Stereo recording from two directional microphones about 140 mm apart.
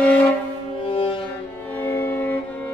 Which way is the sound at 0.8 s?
40° left (ahead or behind).